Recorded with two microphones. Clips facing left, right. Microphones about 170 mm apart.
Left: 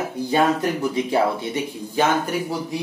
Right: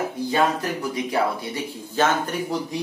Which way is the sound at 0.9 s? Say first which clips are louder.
Left 1 dB; 25° left (ahead or behind).